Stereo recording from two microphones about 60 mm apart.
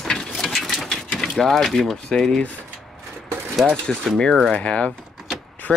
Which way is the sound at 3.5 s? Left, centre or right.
Centre.